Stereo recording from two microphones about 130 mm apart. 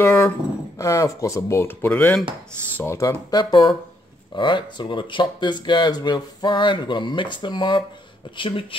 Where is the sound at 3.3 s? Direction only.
35° left (ahead or behind).